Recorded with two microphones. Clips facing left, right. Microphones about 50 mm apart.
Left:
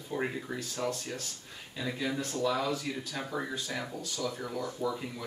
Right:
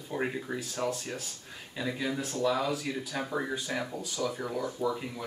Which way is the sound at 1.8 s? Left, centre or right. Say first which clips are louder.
Right 1 dB; centre.